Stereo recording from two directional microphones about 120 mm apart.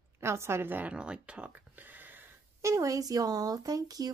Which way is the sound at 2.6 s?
25° right (ahead or behind).